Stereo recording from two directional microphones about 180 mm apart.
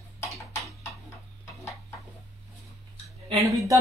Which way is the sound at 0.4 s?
15° left (ahead or behind).